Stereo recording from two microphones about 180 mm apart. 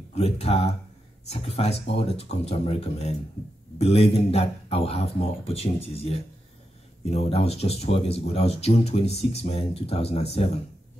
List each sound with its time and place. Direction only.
0.1 s speech: 35° left (ahead or behind)